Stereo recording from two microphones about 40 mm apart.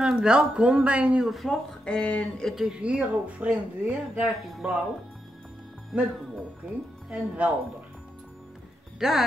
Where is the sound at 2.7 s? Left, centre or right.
Right.